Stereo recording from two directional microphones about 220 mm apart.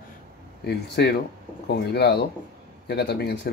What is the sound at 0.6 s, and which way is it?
Speech, 50° left (ahead or behind).